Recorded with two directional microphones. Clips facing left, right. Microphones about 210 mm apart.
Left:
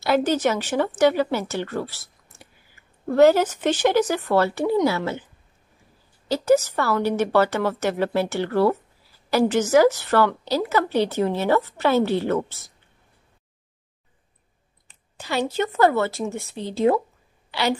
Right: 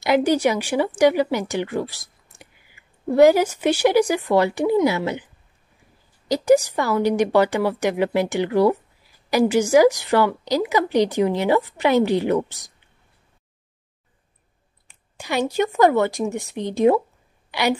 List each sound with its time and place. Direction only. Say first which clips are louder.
0.0 s a woman's voice: right 2 dB; 15° right (ahead or behind)
14.9 s a woman's voice: right 2 dB; 15° right (ahead or behind)